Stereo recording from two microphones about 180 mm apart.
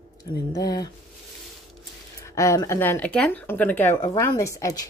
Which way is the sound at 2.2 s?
15° left (ahead or behind).